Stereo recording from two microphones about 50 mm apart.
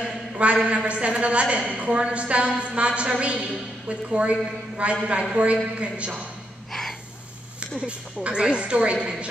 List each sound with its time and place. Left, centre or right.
0.0 s a sound: right
0.7 s a woman's voice: right
6.7 s gasp: centre
7.8 s a woman's voice: right